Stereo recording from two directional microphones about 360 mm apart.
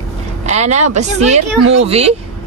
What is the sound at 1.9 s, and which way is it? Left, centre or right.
Speech, centre.